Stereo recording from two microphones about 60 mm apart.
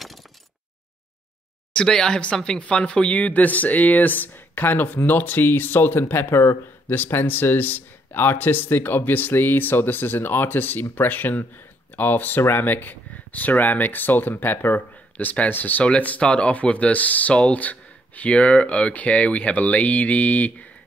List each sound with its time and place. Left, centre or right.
1.7 s speech: centre; by 6.6 s left
6.9 s speech: left